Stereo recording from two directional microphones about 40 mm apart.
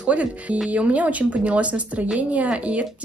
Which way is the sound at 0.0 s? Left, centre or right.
Right.